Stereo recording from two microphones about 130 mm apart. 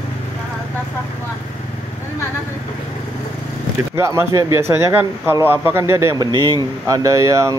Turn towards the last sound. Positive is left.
turn(degrees=-25)  # may be behind; listen again after turning